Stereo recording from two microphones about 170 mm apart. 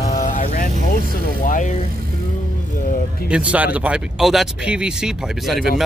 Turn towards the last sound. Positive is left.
turn(degrees=0)  # may be behind; listen again after turning